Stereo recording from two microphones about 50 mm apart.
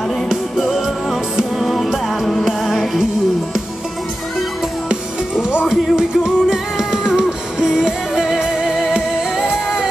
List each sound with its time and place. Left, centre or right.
0.6 s music: centre
4.8 s music: centre
9.5 s singing: centre